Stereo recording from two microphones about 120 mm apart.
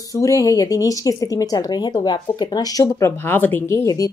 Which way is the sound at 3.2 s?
15° left (ahead or behind).